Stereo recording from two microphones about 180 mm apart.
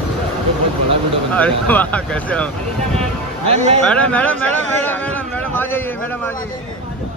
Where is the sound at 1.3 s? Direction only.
10° left (ahead or behind).